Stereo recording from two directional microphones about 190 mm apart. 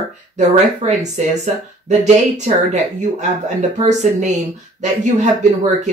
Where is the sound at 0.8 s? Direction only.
35° right (ahead or behind).